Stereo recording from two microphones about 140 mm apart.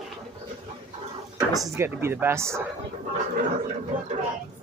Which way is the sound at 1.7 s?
20° right (ahead or behind).